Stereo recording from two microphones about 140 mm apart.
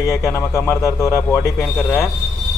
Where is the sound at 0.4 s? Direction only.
20° left (ahead or behind).